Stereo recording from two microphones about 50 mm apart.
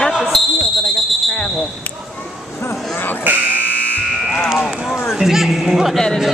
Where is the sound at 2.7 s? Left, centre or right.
Left.